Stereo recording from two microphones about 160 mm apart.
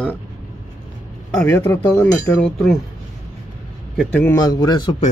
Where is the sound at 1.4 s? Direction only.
15° left (ahead or behind).